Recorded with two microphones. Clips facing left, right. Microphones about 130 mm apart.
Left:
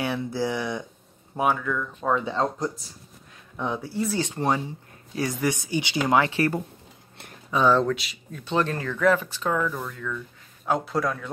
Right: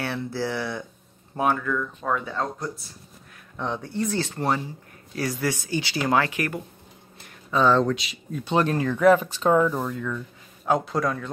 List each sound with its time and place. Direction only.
0.0 s speech: 15° left (ahead or behind)
2.0 s speech: 15° left (ahead or behind)
3.5 s speech: 10° left (ahead or behind)
4.2 s speech: 15° left (ahead or behind)
6.3 s speech: 30° left (ahead or behind)
7.5 s speech: 10° left (ahead or behind)
8.5 s speech: 15° right (ahead or behind)
10.6 s a man's voice: centre (ahead or behind)